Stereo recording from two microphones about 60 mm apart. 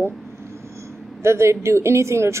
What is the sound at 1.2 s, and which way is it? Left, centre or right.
Speech, right.